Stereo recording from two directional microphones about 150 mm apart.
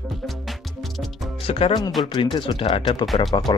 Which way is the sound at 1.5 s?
40° left (ahead or behind).